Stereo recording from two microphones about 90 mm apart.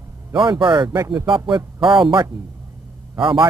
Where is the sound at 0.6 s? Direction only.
60° right (ahead or behind).